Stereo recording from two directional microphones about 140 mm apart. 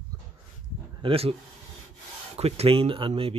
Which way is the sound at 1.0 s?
45° right (ahead or behind).